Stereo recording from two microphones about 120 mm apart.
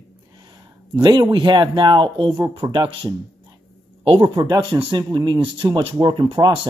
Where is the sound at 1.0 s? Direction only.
40° right (ahead or behind).